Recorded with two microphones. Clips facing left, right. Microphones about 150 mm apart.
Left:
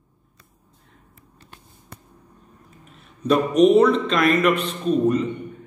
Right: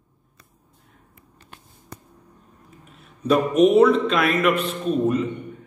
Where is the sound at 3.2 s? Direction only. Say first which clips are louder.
Left 1 dB; 5° right (ahead or behind).